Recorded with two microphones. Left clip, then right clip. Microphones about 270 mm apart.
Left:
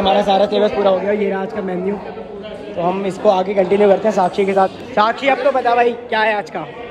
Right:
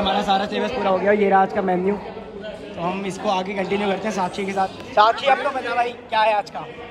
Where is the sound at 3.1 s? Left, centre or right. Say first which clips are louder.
Left 10 dB; centre.